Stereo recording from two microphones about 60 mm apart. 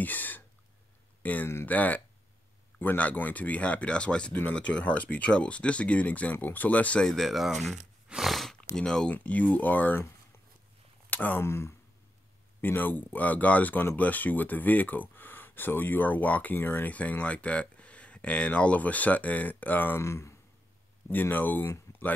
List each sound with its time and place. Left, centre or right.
0.0 s a sound: left
1.2 s speech: left
7.0 s speech: centre
8.7 s speech: centre
9.1 s speech: left
11.1 s speech: left
11.4 s speech: left
12.6 s speech: left
20.0 s speech: left
21.1 s speech: left